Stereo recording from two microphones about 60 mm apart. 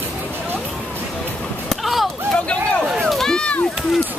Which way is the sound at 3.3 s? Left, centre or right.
Centre.